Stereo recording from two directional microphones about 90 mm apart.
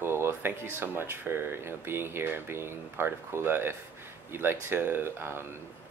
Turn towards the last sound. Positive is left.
turn(degrees=-25)  # may be behind; listen again after turning